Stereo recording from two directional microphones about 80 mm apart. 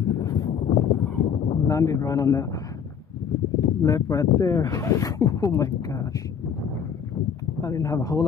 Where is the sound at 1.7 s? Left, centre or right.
Left.